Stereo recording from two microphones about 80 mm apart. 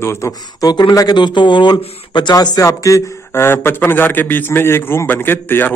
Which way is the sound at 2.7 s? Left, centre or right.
Left.